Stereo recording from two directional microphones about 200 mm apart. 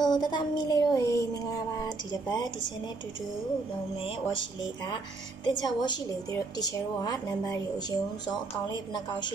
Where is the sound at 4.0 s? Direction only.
25° left (ahead or behind).